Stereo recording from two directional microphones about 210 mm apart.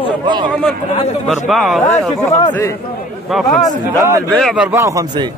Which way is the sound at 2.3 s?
15° left (ahead or behind).